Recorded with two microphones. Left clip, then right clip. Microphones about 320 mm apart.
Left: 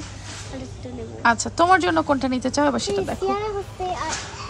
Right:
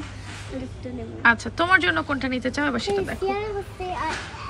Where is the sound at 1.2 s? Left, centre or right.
Centre.